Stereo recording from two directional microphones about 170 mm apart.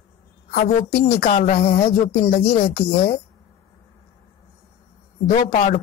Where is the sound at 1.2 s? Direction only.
45° left (ahead or behind).